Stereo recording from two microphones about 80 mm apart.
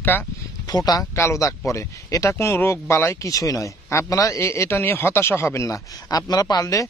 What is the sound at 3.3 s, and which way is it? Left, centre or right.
Speech, left.